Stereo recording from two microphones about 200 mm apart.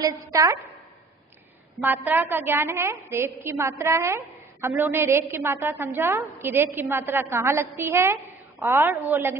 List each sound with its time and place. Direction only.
0.0 s a woman's voice: 15° right (ahead or behind)
1.8 s a woman's voice: 10° right (ahead or behind)